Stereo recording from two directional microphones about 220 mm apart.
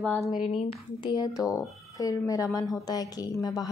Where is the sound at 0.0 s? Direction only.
5° left (ahead or behind).